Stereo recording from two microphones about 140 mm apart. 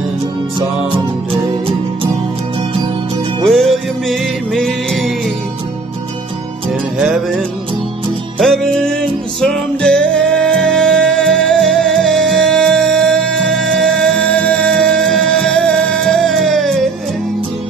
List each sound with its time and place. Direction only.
3.4 s music: centre (ahead or behind)
7.0 s music: centre (ahead or behind)
8.4 s music: centre (ahead or behind)